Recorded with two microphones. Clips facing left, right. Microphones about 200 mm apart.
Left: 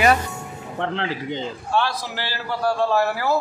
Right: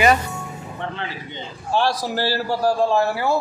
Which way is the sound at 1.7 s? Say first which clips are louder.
Right 4 dB; 40° right (ahead or behind).